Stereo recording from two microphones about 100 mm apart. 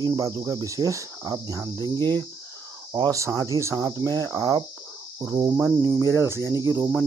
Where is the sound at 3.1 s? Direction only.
35° right (ahead or behind).